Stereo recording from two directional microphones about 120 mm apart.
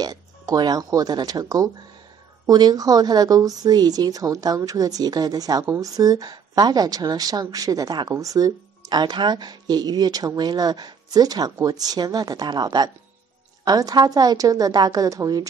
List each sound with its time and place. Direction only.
0.0 s a woman's voice: 35° right (ahead or behind)